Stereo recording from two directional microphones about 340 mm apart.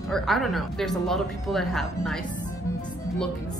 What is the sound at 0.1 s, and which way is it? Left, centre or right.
A woman's voice, centre.